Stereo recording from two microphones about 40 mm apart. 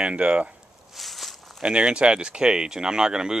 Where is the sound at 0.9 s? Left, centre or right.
Centre.